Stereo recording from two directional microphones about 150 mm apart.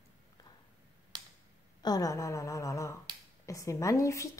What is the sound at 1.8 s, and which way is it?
A woman's voice, 25° left (ahead or behind).